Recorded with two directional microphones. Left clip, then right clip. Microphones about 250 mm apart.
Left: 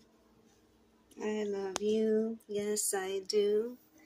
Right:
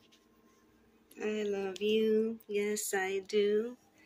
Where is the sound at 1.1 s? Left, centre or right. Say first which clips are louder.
Right 1 dB; centre.